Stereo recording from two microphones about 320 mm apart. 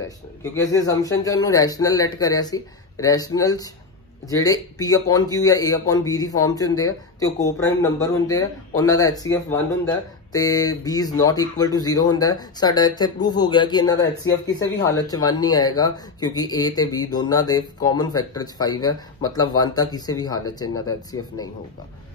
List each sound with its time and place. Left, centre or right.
0.4 s a man's voice: centre